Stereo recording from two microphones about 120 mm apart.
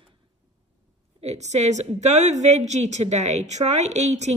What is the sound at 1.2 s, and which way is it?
A woman's voice, 70° right (ahead or behind).